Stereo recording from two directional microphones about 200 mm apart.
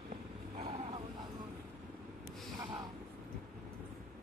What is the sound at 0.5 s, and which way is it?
Vehicle, 30° right (ahead or behind).